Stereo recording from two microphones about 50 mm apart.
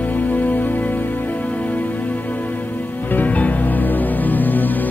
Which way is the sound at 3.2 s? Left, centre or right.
Left.